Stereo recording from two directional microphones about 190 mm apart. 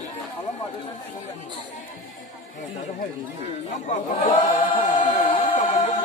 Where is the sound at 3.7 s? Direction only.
40° left (ahead or behind).